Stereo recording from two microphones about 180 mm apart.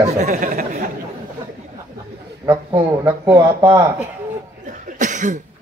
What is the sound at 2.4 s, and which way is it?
Speech, 15° right (ahead or behind).